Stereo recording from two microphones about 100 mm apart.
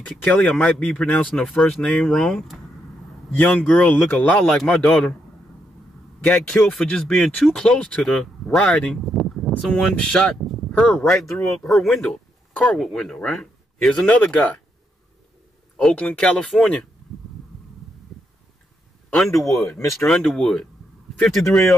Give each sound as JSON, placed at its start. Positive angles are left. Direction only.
{"t": 0.3, "sound": "speech", "side_deg": 15}
{"t": 6.2, "sound": "a man's voice", "side_deg": 20}
{"t": 6.6, "sound": "speech", "side_deg": 0}
{"t": 9.0, "sound": "speech", "side_deg": 0}
{"t": 10.7, "sound": "speech", "side_deg": 15}
{"t": 15.8, "sound": "speech", "side_deg": 10}
{"t": 19.0, "sound": "speech", "side_deg": 5}